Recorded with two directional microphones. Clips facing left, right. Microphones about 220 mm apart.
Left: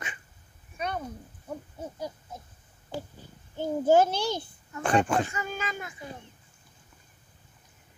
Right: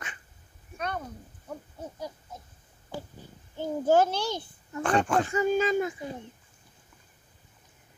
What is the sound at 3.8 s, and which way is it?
A child's voice, 10° left (ahead or behind).